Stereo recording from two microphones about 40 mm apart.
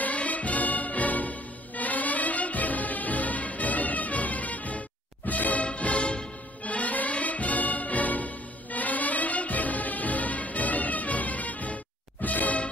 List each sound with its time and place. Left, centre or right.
0.0 s music: left